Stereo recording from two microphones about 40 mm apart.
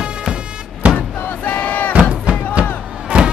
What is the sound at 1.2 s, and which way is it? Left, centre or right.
Crowd, left.